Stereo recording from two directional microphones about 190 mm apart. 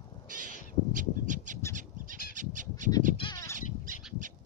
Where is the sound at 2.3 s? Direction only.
40° right (ahead or behind).